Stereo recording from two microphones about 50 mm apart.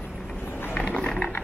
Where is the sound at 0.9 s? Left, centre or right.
Centre.